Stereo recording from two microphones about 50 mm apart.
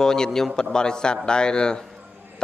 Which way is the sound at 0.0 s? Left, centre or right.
Centre.